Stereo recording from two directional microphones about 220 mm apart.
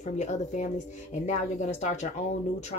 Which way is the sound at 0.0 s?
30° left (ahead or behind).